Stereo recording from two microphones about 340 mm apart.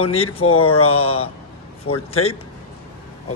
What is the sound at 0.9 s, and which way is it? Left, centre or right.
Speech, centre.